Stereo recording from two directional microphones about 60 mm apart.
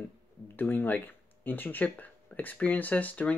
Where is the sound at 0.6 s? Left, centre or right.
Left.